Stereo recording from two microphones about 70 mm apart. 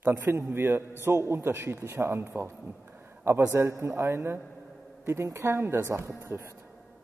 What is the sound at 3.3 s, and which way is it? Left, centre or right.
A man's voice, right.